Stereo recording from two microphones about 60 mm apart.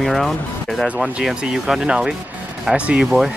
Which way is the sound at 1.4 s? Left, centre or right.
Centre.